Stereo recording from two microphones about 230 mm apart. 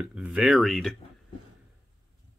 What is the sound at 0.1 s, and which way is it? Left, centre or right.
Speech, centre.